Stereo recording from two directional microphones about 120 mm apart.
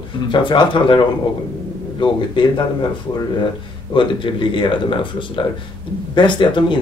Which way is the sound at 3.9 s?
45° left (ahead or behind).